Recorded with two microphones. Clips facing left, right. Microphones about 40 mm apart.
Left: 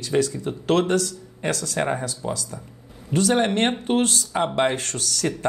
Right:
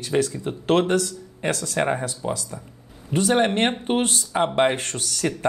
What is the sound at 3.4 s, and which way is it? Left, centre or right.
Speech, right.